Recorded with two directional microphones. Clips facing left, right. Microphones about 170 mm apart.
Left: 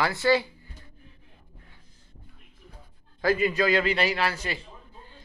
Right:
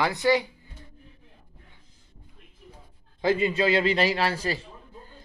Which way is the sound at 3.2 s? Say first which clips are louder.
Right 1 dB; 25° right (ahead or behind).